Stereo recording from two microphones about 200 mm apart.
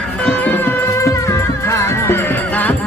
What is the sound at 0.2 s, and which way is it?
Music, 10° left (ahead or behind).